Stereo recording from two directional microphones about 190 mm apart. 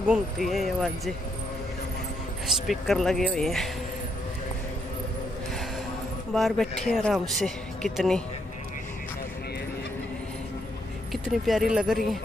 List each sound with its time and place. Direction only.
0.1 s speech: centre (ahead or behind)
2.4 s speech: centre (ahead or behind)
6.3 s speech: centre (ahead or behind)
11.1 s speech: centre (ahead or behind)